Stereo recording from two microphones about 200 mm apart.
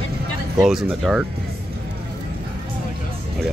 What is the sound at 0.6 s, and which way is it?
Speech, 5° right (ahead or behind).